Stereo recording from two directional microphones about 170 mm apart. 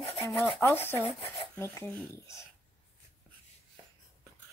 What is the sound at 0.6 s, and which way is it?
Speech, 15° left (ahead or behind).